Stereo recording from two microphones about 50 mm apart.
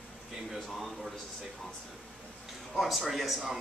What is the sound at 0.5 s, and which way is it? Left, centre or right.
Speech, centre.